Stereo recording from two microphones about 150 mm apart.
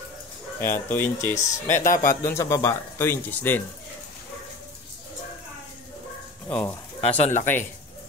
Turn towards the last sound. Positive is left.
turn(degrees=50)  # may be behind; listen again after turning